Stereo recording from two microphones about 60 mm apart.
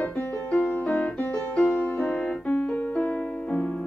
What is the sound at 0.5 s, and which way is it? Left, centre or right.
Music, left.